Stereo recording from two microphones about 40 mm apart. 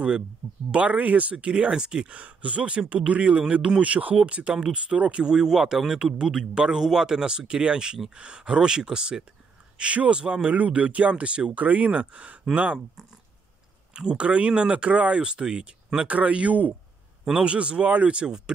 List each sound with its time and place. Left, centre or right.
0.7 s speech: right; by 2.0 s centre
2.0 s speech: right
3.8 s speech: right
5.2 s speech: centre
9.8 s speech: right
13.9 s speech: right
16.1 s speech: right
17.4 s speech: right